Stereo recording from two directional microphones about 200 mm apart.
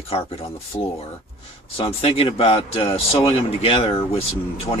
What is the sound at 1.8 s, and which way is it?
Speech, 30° left (ahead or behind).